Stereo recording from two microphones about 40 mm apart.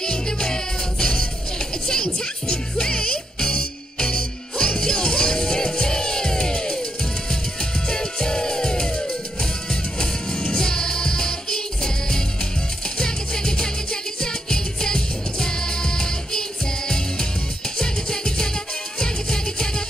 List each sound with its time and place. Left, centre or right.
0.0 s music: centre
7.9 s music: centre